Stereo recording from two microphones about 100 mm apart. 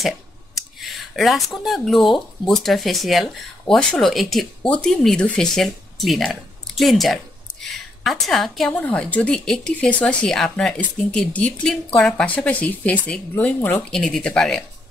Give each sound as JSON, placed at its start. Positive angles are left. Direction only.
{"t": 0.7, "sound": "speech", "side_deg": 0}
{"t": 4.6, "sound": "speech", "side_deg": 10}
{"t": 8.8, "sound": "speech", "side_deg": 15}
{"t": 13.8, "sound": "speech", "side_deg": 5}